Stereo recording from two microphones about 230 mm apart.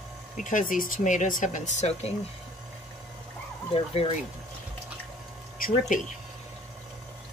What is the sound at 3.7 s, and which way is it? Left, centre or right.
Speech, left.